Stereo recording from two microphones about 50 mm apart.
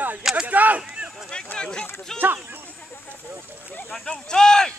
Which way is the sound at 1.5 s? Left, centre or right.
Centre.